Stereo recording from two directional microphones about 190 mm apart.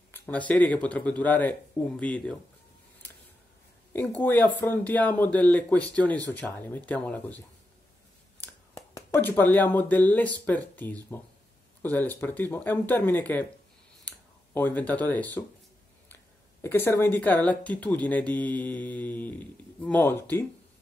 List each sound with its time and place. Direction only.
0.1 s speech: 10° left (ahead or behind)
3.9 s speech: 10° left (ahead or behind)
8.9 s speech: 15° left (ahead or behind)
16.6 s speech: 10° left (ahead or behind)